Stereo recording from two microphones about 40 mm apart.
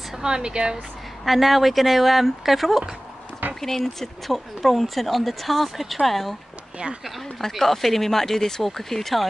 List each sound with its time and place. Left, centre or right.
0.2 s speech: right
1.2 s speech: centre
7.3 s speech: centre